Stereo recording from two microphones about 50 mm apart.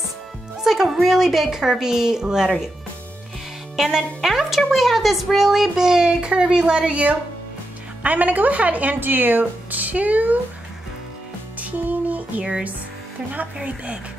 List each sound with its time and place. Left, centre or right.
0.6 s a woman's voice: centre
3.7 s a woman's voice: centre; by 10.4 s right
11.6 s music: right